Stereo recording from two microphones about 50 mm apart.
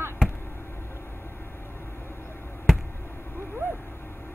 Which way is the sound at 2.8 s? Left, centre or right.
Left.